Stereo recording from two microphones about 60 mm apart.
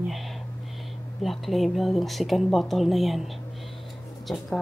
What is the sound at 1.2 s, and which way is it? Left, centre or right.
Speech, centre.